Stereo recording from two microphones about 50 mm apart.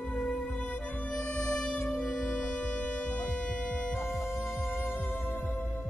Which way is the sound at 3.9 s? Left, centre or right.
Left.